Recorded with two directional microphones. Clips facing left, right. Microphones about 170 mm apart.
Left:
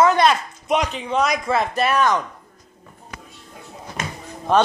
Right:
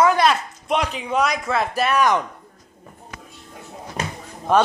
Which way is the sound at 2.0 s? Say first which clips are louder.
Right 2 dB; 15° right (ahead or behind).